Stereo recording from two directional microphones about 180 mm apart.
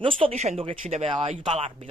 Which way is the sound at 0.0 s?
30° right (ahead or behind).